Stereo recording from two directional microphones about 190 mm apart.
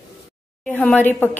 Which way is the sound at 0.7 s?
10° left (ahead or behind).